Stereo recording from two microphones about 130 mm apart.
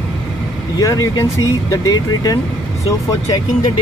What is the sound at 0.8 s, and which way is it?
Speech, 25° left (ahead or behind).